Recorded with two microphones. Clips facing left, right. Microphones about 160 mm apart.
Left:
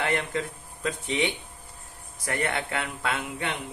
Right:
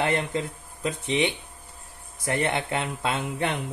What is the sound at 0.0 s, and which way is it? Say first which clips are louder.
Speech: right 2 dB; 25° right (ahead or behind).